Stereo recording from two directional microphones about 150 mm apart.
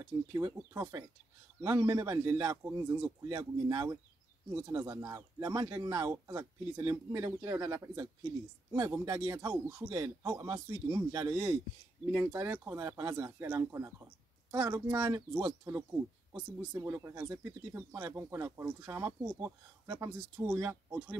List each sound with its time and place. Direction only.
0.0 s speech: 20° right (ahead or behind)